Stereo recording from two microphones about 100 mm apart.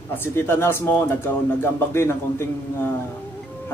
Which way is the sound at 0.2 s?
25° left (ahead or behind).